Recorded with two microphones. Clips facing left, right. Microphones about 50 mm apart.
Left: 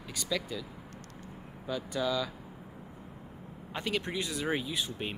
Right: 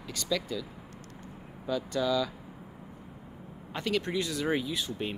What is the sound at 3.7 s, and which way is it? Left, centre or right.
Speech, centre.